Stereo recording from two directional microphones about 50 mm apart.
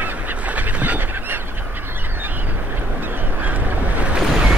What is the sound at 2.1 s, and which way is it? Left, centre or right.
Boat, right.